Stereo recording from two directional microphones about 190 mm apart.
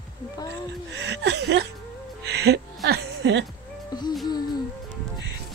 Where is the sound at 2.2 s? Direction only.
60° right (ahead or behind).